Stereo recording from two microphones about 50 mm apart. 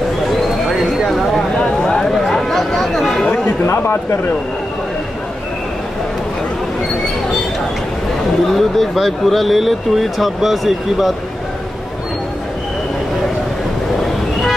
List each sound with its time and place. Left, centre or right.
1.6 s a sound: centre
3.6 s speech: left
8.5 s speech: centre